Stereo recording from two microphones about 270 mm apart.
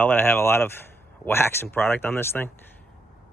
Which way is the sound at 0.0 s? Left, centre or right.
Centre.